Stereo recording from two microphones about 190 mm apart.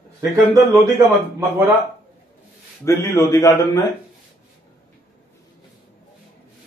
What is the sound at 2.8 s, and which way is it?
A man's voice, 15° left (ahead or behind).